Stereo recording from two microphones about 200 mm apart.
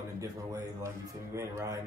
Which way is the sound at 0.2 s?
15° right (ahead or behind).